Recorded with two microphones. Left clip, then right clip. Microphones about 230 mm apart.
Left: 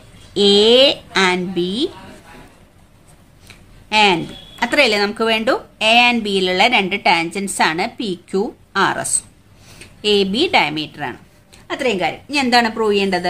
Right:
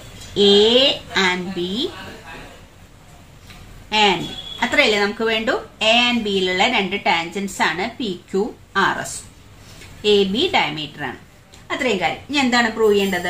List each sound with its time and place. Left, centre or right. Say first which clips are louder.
0.3 s a woman's voice: left 2 dB; left
3.9 s speech: left 3 dB; left